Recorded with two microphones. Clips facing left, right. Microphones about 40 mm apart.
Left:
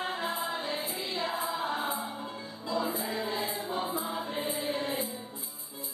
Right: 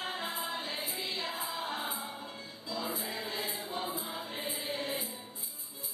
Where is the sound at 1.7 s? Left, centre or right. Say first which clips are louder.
Left 5 dB; left.